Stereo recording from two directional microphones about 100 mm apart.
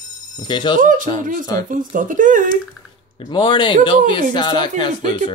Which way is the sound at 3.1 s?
50° left (ahead or behind).